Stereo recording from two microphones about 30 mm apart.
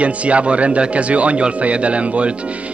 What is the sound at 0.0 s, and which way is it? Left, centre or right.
Speech, right.